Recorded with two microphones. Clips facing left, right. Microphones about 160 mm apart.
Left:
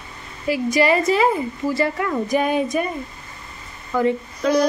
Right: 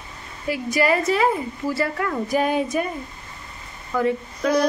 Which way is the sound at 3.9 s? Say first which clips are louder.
Left 2 dB; 5° right (ahead or behind).